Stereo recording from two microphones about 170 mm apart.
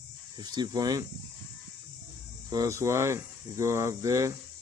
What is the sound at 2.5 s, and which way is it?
Speech, 20° right (ahead or behind).